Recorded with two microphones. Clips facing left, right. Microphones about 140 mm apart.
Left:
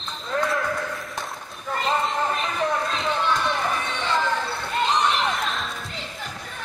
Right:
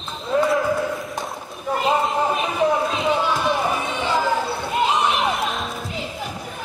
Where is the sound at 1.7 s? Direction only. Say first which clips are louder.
Right 4 dB; 10° right (ahead or behind).